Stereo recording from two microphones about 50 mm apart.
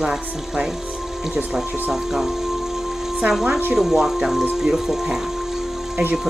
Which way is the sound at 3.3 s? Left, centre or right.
Centre.